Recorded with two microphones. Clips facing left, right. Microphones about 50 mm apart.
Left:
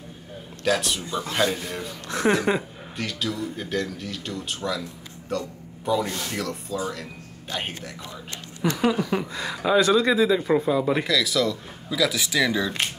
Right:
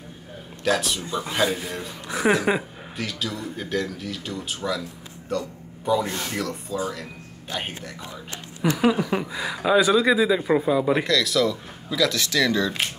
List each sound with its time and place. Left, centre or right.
0.7 s a man's voice: centre
5.4 s a sound: centre
6.0 s speech: right
6.3 s a man's voice: centre
8.9 s a sound: centre
9.2 s a man's voice: centre